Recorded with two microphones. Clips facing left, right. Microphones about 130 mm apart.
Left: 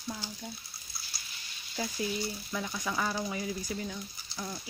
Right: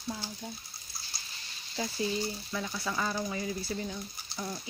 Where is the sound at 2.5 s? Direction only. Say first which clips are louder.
Left 1 dB; 10° left (ahead or behind).